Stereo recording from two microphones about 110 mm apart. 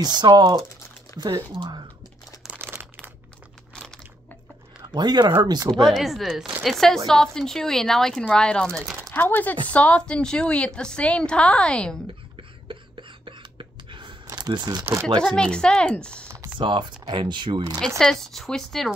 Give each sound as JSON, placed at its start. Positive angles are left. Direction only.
{"t": 0.2, "sound": "speech", "side_deg": -40}
{"t": 2.6, "sound": "crumpling", "side_deg": -20}
{"t": 3.7, "sound": "crunch", "side_deg": 5}
{"t": 4.9, "sound": "speech", "side_deg": -40}
{"t": 5.7, "sound": "a woman's voice", "side_deg": 0}
{"t": 12.4, "sound": "a sound", "side_deg": -50}
{"t": 15.1, "sound": "a woman's voice", "side_deg": 10}
{"t": 16.5, "sound": "speech", "side_deg": -45}
{"t": 17.7, "sound": "speech", "side_deg": 5}